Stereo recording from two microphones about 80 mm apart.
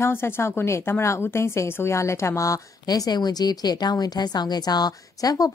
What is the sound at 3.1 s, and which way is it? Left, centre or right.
A woman's voice, left.